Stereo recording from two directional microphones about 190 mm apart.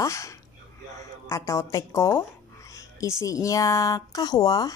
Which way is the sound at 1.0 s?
15° left (ahead or behind).